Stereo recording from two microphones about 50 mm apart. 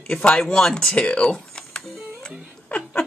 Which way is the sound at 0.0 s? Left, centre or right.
Centre.